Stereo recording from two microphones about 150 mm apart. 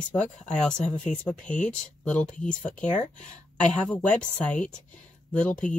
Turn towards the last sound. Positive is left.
turn(degrees=5)  # may be behind; listen again after turning